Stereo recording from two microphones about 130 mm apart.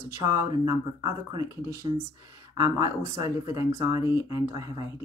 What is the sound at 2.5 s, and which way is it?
Speech, 30° right (ahead or behind).